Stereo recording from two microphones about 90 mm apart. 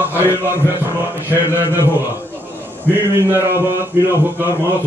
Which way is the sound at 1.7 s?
25° right (ahead or behind).